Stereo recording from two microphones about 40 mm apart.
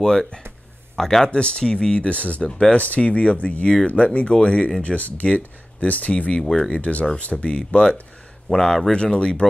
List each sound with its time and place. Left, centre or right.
0.0 s speech: centre
1.3 s speech: left
2.0 s speech: left
4.8 s speech: left
8.5 s speech: centre
8.9 s speech: left